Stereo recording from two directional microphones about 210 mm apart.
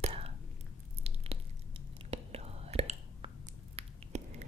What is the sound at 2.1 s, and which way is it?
Whispering, 30° right (ahead or behind).